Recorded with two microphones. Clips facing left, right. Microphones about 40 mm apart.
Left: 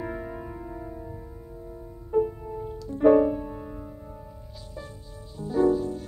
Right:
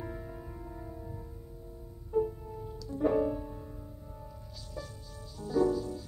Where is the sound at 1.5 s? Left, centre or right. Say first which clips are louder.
Left 8 dB; left.